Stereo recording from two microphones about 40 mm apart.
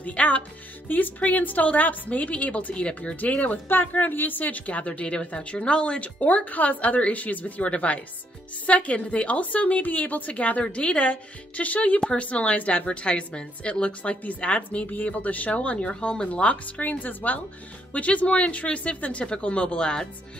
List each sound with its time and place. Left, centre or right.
0.0 s a woman's voice: left
0.8 s a woman's voice: left
10.6 s a woman's voice: left